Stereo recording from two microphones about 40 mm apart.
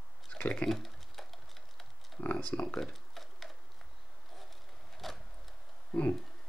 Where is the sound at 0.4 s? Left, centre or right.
Left.